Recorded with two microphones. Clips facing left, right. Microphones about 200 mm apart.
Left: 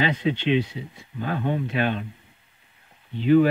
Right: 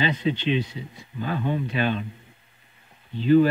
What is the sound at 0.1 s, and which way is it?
Speech, 10° left (ahead or behind).